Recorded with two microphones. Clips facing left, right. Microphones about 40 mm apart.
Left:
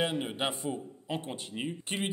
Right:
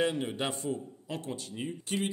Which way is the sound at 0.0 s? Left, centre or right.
Left.